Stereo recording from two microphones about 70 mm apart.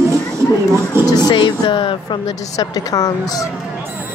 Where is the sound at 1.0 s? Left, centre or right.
Left.